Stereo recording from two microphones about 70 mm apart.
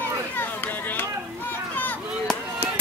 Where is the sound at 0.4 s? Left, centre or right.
Left.